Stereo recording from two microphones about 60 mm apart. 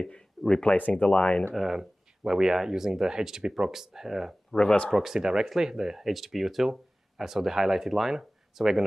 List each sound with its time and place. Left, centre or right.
0.0 s speech: centre
0.7 s speech: left
1.5 s speech: centre
4.5 s speech: centre
4.9 s speech: centre